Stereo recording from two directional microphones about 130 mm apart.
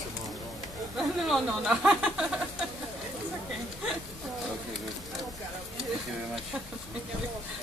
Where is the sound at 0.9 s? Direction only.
Centre (ahead or behind).